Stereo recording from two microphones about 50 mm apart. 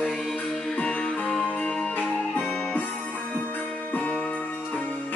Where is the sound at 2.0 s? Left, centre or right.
Left.